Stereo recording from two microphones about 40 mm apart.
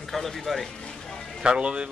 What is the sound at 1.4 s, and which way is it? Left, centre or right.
Speech, right.